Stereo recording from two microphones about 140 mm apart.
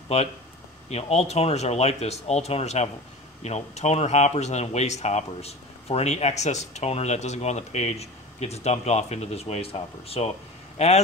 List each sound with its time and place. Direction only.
0.1 s speech: 50° left (ahead or behind)